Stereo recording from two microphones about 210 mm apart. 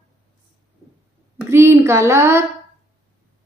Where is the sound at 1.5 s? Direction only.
15° right (ahead or behind).